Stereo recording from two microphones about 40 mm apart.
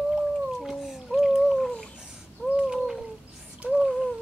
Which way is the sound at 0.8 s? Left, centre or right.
Centre.